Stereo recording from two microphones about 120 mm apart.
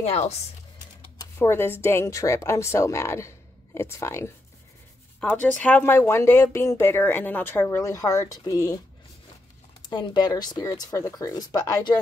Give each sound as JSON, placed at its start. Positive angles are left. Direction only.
{"t": 0.0, "sound": "speech", "side_deg": 65}
{"t": 1.2, "sound": "speech", "side_deg": 25}
{"t": 9.8, "sound": "speech", "side_deg": 35}